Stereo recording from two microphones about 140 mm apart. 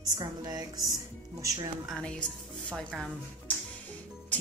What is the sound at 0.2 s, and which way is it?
Music, 30° right (ahead or behind).